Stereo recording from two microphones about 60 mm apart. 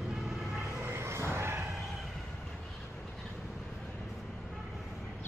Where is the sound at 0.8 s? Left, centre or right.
Right.